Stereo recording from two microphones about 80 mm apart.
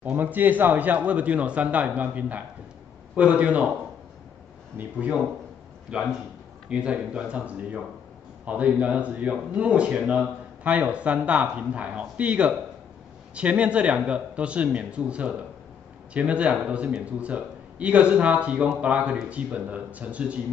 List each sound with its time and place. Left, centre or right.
0.0 s speech: right
4.7 s speech: centre